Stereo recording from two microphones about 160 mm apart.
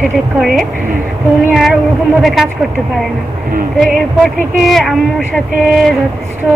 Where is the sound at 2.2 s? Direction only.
Centre (ahead or behind).